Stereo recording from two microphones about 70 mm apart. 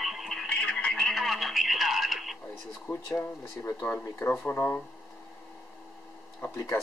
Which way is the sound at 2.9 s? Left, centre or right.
Left.